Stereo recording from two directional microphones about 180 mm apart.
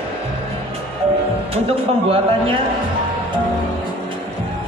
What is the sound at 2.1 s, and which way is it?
Speech, 30° right (ahead or behind).